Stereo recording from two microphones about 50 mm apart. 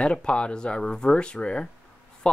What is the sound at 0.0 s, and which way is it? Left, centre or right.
Speech, centre.